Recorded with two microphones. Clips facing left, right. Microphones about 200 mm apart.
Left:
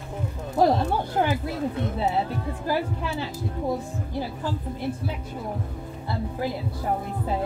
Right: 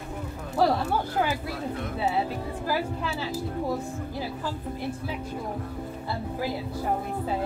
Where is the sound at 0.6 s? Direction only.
20° left (ahead or behind).